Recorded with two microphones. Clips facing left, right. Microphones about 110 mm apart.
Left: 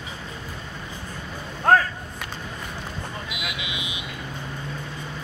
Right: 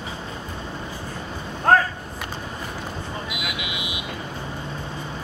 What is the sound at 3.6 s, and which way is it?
Vehicle, 25° left (ahead or behind).